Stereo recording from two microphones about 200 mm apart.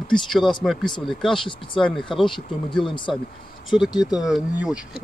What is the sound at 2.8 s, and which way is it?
Speech, 25° left (ahead or behind).